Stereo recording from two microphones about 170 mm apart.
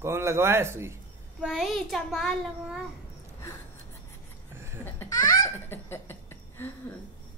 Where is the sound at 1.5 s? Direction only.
Centre (ahead or behind).